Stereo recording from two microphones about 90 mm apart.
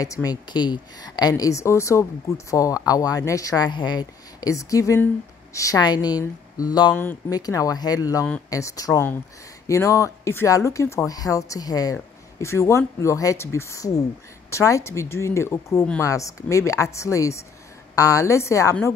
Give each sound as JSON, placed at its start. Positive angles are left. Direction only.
{"t": 0.0, "sound": "a woman's voice", "side_deg": 45}
{"t": 5.8, "sound": "a woman's voice", "side_deg": 50}
{"t": 6.9, "sound": "speech", "side_deg": 25}
{"t": 7.2, "sound": "a woman's voice", "side_deg": 45}
{"t": 16.0, "sound": "speech", "side_deg": 35}